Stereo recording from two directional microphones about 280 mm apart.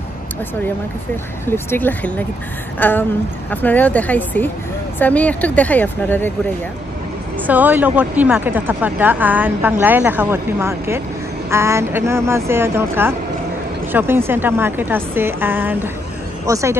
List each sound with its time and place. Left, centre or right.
1.4 s a woman's voice: centre
7.4 s speech: centre